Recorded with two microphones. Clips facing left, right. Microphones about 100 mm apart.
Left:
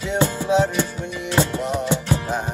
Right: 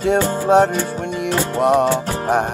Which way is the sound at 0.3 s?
50° right (ahead or behind).